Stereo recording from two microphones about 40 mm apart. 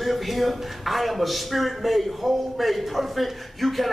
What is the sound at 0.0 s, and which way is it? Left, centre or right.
Speech, centre.